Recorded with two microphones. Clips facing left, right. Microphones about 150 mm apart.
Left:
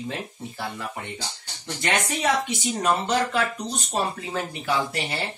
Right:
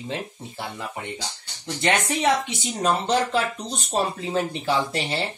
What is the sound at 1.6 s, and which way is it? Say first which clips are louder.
Speech: right 3 dB; 25° right (ahead or behind).